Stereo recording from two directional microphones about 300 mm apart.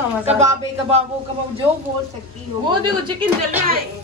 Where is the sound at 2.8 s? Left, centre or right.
Centre.